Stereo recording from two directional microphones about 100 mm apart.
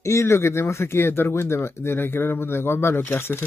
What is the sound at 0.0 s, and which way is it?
Speech, 30° left (ahead or behind).